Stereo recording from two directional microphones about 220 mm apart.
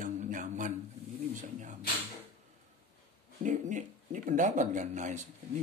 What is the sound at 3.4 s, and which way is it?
Speech, 35° right (ahead or behind).